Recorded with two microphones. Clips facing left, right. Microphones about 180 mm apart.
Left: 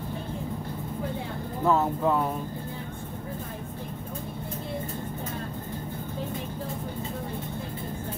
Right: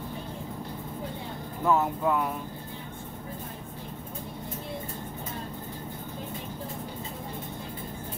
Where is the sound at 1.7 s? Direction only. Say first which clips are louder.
Left 1 dB; 30° left (ahead or behind).